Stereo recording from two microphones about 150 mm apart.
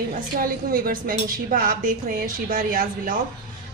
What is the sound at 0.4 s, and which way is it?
A woman's voice, 75° right (ahead or behind).